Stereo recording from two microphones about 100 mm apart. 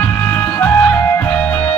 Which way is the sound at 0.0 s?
20° left (ahead or behind).